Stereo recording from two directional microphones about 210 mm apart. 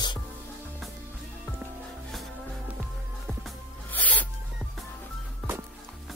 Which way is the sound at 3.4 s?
5° left (ahead or behind).